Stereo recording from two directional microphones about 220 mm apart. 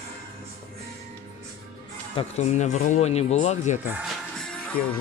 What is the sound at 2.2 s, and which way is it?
Speech, 30° left (ahead or behind).